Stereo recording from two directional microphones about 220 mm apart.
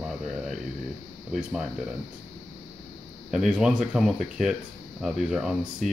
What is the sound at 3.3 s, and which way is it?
Speech, 5° right (ahead or behind).